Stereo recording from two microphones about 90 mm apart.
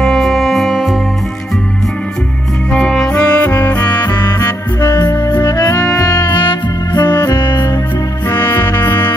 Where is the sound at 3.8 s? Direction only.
50° left (ahead or behind).